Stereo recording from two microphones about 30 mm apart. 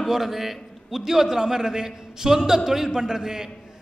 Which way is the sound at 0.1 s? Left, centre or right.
Centre.